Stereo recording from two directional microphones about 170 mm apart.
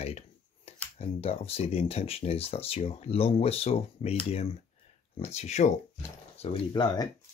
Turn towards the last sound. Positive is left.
turn(degrees=25)  # may be behind; listen again after turning